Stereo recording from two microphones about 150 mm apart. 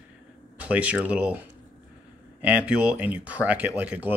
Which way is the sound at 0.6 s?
10° right (ahead or behind).